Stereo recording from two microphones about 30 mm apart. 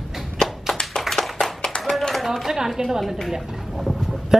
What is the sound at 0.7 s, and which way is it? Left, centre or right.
Tap, centre.